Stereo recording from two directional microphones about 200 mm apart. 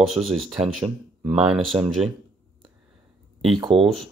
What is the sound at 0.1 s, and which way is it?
Speech, centre (ahead or behind).